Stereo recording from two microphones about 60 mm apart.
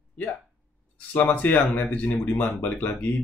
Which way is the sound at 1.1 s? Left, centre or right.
Left.